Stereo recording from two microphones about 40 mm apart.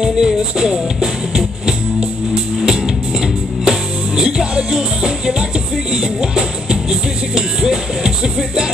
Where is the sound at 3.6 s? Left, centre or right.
Centre.